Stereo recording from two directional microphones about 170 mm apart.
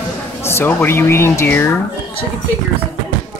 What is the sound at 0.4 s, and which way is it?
Speech, 15° left (ahead or behind).